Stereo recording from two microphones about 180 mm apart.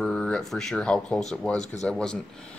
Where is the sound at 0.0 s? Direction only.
5° left (ahead or behind).